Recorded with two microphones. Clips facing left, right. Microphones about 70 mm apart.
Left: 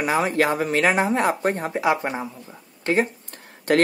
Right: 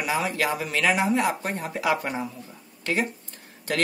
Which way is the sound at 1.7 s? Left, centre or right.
Left.